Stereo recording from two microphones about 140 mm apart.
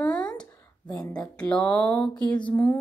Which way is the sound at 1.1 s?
5° left (ahead or behind).